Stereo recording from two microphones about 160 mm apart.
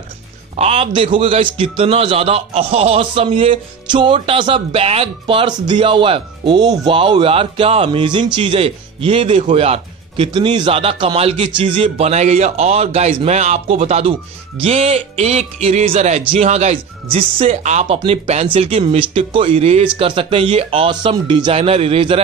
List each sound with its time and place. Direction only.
0.6 s a man's voice: 40° right (ahead or behind)